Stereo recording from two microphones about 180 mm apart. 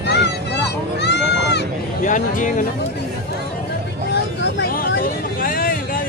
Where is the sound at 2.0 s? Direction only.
45° left (ahead or behind).